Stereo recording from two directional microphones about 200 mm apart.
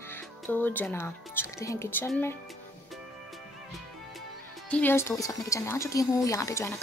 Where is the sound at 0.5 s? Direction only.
10° left (ahead or behind).